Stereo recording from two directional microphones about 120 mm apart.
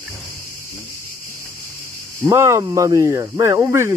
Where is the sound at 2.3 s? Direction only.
25° right (ahead or behind).